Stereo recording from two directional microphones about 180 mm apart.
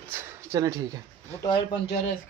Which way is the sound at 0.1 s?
15° right (ahead or behind).